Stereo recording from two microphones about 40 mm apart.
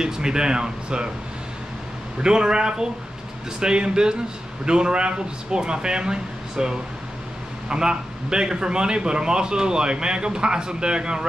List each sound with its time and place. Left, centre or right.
0.0 s a man's voice: centre
2.2 s a man's voice: centre